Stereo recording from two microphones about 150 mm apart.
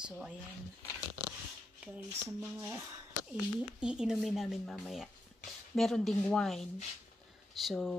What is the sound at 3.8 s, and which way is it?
Speech, 5° right (ahead or behind).